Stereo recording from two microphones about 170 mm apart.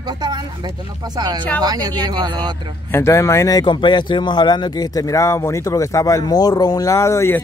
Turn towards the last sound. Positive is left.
turn(degrees=15)  # may be behind; listen again after turning